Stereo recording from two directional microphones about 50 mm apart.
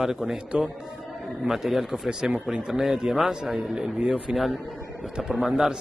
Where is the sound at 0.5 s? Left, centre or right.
Right.